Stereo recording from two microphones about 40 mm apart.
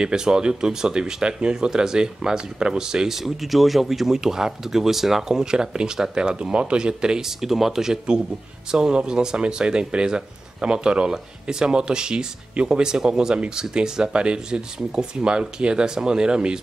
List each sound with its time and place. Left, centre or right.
0.0 s speech: centre
3.2 s speech: centre
5.4 s speech: centre